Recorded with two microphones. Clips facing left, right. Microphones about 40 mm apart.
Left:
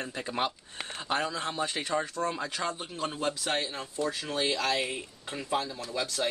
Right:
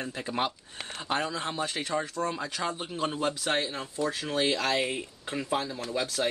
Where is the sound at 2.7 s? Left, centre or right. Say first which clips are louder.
Right 3 dB; centre.